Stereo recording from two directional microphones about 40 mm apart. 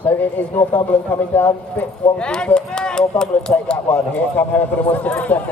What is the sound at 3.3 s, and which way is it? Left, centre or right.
Speech, left.